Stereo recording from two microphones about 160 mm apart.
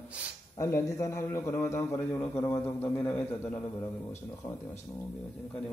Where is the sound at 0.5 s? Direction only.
15° left (ahead or behind).